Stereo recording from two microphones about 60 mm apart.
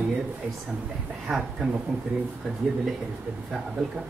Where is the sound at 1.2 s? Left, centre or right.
Centre.